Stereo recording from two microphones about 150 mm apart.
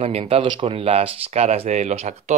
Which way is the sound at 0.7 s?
40° right (ahead or behind).